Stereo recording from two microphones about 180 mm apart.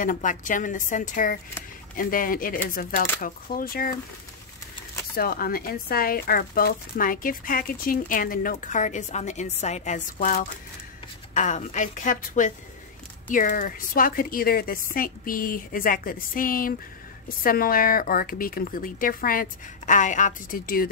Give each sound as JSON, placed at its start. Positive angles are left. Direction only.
{"t": 0.0, "sound": "speech", "side_deg": 45}
{"t": 5.1, "sound": "speech", "side_deg": 55}